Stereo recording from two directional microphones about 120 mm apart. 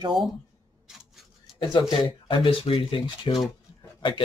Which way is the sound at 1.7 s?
40° left (ahead or behind).